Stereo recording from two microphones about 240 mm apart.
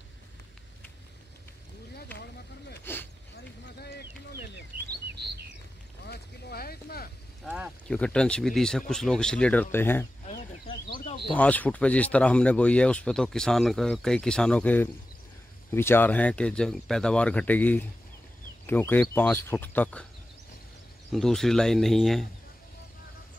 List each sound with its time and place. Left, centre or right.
2.8 s speech: centre
3.8 s speech: left
5.1 s chirp: right
6.0 s speech: left
7.4 s speech: centre
10.2 s a sound: centre
11.2 s speech: centre
21.1 s speech: centre